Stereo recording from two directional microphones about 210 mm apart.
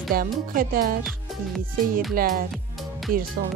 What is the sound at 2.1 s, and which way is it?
Speech, 45° right (ahead or behind).